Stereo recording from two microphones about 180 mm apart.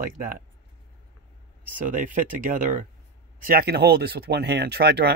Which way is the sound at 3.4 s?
60° right (ahead or behind).